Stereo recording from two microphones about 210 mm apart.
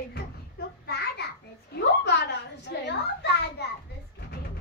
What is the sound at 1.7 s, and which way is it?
A child's voice, 55° left (ahead or behind).